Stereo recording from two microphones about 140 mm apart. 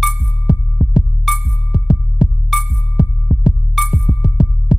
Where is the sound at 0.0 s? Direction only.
5° right (ahead or behind).